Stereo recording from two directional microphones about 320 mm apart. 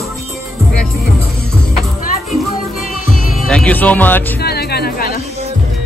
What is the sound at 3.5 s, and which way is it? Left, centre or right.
Music, centre.